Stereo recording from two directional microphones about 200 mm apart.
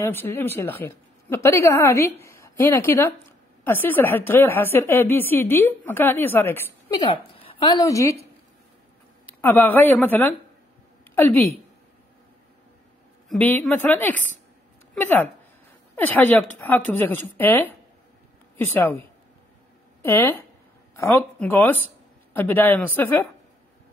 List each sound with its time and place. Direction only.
0.0 s a woman's voice: 10° left (ahead or behind)
7.0 s a woman's voice: 25° left (ahead or behind)
9.4 s a woman's voice: 10° left (ahead or behind)
13.3 s a woman's voice: 10° left (ahead or behind)
20.0 s a woman's voice: 10° left (ahead or behind)